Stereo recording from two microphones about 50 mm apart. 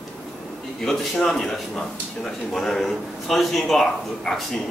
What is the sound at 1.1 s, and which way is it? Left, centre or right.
Speech, centre.